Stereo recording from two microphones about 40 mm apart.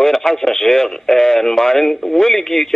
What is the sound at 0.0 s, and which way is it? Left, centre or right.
Speech, centre.